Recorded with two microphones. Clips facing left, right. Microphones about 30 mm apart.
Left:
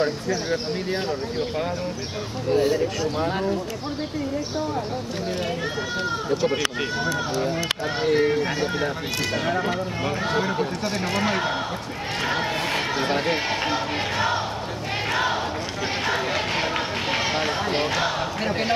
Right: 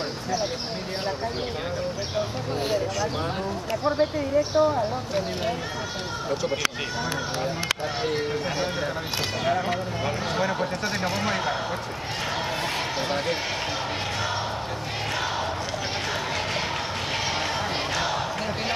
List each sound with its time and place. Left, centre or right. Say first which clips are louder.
3.0 s speech: left 3 dB; centre
8.0 s speech: left 6 dB; centre
9.4 s speech: right 2 dB; centre
12.3 s run: left 4 dB; centre
15.0 s crowd: left 6 dB; centre
16.1 s run: left 5 dB; centre